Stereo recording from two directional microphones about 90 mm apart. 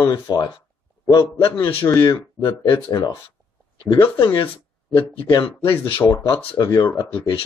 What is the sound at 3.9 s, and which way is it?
Speech, 55° left (ahead or behind).